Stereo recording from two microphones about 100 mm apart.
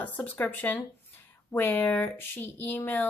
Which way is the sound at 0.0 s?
15° left (ahead or behind).